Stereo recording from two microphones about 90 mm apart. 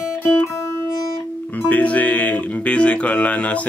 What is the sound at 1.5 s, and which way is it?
Speech, 15° left (ahead or behind).